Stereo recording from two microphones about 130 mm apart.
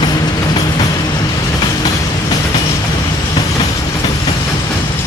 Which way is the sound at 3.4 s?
30° left (ahead or behind).